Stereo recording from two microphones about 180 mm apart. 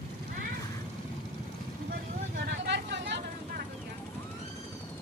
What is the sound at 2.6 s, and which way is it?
Vehicle, 70° right (ahead or behind).